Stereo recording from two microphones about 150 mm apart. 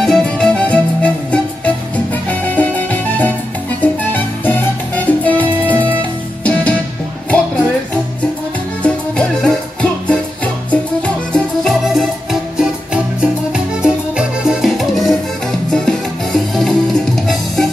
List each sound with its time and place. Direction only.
0.0 s music: 5° left (ahead or behind)
8.8 s music: 5° left (ahead or behind)